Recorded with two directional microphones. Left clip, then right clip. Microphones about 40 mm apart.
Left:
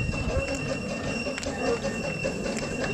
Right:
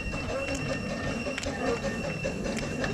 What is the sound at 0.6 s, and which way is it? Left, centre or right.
Train, left.